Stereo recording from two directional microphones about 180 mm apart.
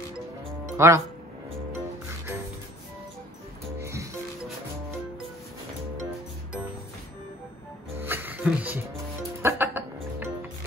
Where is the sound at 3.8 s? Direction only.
15° right (ahead or behind).